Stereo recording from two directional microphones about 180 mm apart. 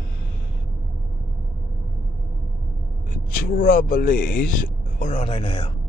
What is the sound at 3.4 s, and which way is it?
Speech, 50° left (ahead or behind).